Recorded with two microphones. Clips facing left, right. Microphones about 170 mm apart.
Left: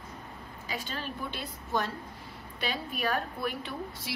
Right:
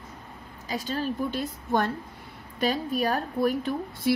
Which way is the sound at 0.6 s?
40° right (ahead or behind).